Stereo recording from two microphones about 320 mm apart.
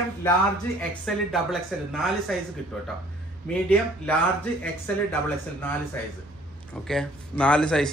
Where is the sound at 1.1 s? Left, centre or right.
Centre.